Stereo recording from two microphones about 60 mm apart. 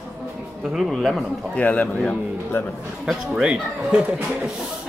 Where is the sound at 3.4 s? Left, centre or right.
Centre.